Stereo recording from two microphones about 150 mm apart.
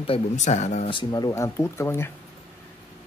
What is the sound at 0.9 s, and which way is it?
Speech, 30° left (ahead or behind).